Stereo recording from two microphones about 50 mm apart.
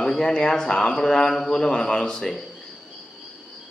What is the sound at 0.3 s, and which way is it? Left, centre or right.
A man's voice, centre.